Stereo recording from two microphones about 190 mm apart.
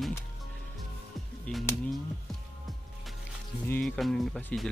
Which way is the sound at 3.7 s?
5° left (ahead or behind).